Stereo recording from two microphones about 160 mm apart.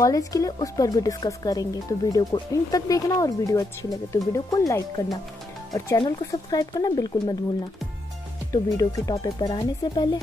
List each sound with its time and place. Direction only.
0.0 s speech: 20° left (ahead or behind)
8.5 s speech: 20° left (ahead or behind)